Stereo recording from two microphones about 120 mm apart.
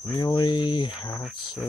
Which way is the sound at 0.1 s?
35° left (ahead or behind).